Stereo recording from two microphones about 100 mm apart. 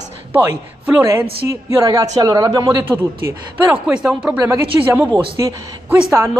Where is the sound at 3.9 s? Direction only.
10° right (ahead or behind).